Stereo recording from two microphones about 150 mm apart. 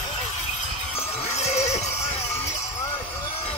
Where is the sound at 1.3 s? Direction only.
45° left (ahead or behind).